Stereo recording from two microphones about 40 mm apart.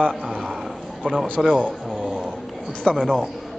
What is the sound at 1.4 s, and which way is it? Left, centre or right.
Speech, centre.